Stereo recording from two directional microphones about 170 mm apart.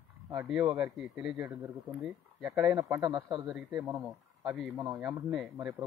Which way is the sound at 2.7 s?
20° right (ahead or behind).